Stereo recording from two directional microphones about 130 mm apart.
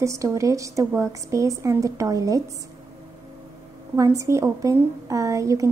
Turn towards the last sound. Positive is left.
turn(degrees=-25)  # may be behind; listen again after turning